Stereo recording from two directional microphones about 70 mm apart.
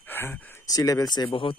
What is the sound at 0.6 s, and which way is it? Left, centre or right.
Speech, left.